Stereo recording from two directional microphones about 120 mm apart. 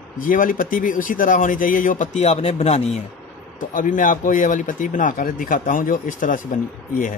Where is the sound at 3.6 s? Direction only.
90° left.